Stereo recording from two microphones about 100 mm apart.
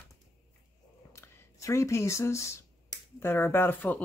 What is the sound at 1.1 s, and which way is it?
Speech, 30° left (ahead or behind).